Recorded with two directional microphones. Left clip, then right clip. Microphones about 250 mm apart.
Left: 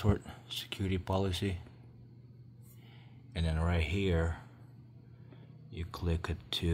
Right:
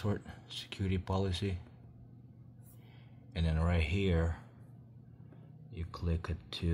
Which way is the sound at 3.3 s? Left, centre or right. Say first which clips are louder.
Left 1 dB; centre.